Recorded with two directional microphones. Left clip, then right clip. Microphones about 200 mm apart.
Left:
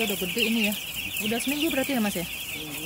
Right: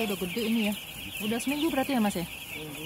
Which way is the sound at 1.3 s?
20° right (ahead or behind).